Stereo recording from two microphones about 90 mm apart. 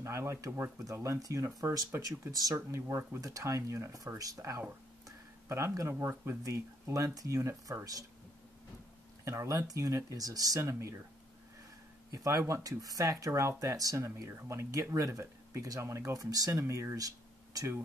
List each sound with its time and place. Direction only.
0.0 s speech: 30° right (ahead or behind)
2.7 s speech: 30° right (ahead or behind)
3.2 s speech: 40° right (ahead or behind)
9.2 s speech: 35° right (ahead or behind)
12.1 s speech: 40° right (ahead or behind)